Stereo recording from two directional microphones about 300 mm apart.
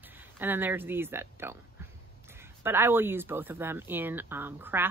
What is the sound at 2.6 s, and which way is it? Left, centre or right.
Speech, centre.